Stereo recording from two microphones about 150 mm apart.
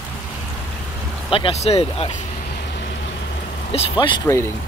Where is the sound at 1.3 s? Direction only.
40° left (ahead or behind).